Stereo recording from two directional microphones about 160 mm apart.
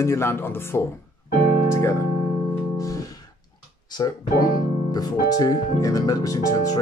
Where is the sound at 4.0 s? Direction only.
25° left (ahead or behind).